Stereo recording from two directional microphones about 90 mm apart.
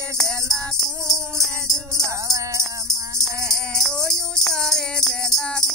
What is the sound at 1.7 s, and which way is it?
Music, 40° right (ahead or behind).